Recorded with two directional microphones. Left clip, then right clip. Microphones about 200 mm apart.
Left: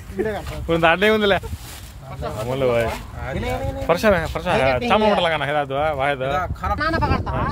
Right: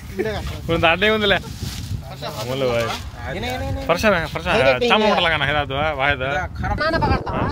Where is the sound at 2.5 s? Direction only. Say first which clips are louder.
Left 1 dB; centre (ahead or behind).